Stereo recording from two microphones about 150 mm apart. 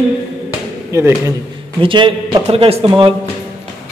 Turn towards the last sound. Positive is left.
turn(degrees=-35)  # may be behind; listen again after turning